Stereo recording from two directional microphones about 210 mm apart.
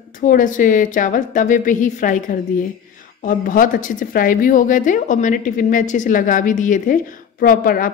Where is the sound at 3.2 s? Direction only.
40° left (ahead or behind).